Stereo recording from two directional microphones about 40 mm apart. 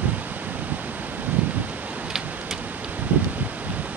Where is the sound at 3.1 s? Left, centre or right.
Right.